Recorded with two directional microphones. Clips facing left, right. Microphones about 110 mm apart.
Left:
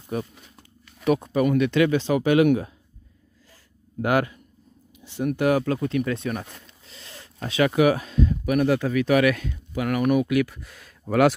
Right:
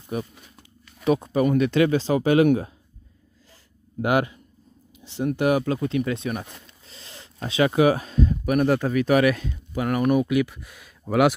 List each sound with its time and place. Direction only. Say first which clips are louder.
0.1 s speech: even; 10° right (ahead or behind)
1.0 s speech: even; 25° right (ahead or behind)
4.0 s speech: even; 20° right (ahead or behind)
6.9 s speech: left 1 dB; 30° right (ahead or behind); by 11.3 s 15° right (ahead or behind)